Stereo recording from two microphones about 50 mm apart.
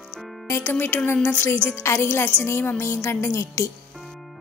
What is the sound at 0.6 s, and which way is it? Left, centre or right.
Speech, left.